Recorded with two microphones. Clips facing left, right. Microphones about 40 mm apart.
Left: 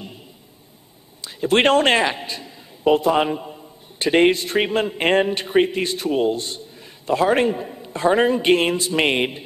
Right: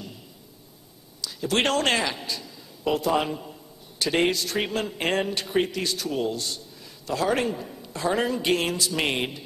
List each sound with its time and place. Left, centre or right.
1.2 s a man's voice: left